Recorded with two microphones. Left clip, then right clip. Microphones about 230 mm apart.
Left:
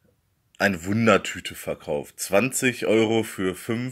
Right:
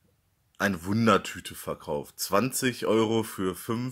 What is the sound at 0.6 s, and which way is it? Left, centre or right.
Speech, centre.